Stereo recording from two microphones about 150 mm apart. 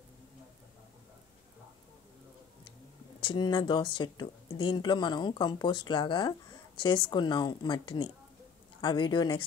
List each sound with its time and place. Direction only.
3.2 s speech: 30° left (ahead or behind)